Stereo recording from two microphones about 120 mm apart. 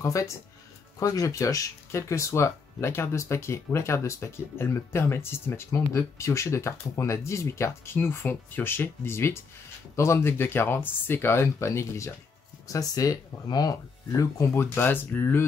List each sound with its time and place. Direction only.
0.0 s speech: 25° left (ahead or behind)